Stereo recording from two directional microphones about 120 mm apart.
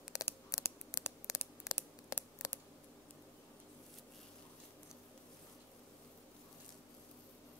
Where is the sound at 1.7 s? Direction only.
25° left (ahead or behind).